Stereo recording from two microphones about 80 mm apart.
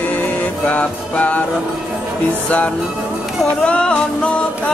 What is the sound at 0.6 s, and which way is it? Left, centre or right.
Music, centre.